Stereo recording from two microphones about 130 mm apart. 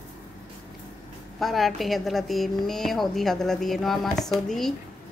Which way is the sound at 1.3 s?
Centre (ahead or behind).